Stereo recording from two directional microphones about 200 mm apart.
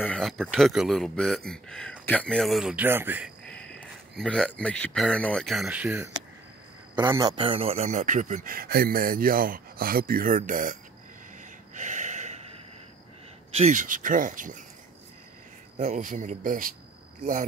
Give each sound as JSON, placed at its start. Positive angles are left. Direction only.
{"t": 0.0, "sound": "speech", "side_deg": 5}
{"t": 3.4, "sound": "a man's voice", "side_deg": 5}
{"t": 11.7, "sound": "a sound", "side_deg": -40}
{"t": 13.6, "sound": "a man's voice", "side_deg": -40}
{"t": 15.8, "sound": "a man's voice", "side_deg": -35}